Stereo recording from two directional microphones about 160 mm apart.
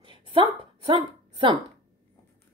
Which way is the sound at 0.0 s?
30° right (ahead or behind).